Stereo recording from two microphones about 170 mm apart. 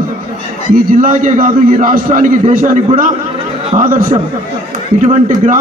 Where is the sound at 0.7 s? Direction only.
55° right (ahead or behind).